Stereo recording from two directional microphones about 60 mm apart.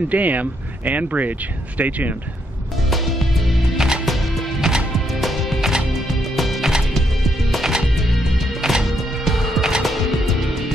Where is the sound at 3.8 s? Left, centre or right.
Centre.